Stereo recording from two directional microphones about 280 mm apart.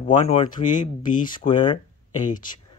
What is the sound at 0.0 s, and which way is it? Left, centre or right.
Speech, left.